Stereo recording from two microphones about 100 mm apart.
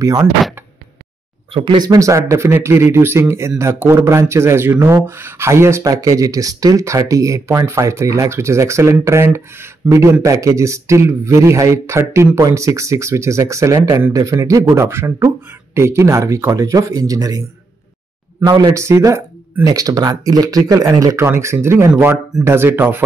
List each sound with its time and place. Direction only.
1.5 s speech: 60° right (ahead or behind)
1.8 s speech: 35° right (ahead or behind)
18.4 s speech: 45° right (ahead or behind); by 23.0 s 20° right (ahead or behind)